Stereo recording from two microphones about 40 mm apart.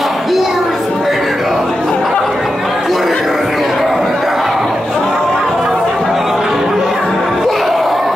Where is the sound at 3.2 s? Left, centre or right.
Centre.